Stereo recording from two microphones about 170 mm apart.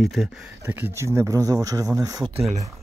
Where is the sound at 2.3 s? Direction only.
40° right (ahead or behind).